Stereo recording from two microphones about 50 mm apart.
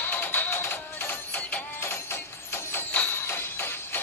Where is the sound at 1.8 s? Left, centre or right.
Left.